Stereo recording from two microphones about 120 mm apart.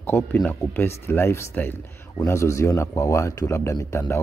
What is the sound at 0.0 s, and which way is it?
Speech, 15° left (ahead or behind).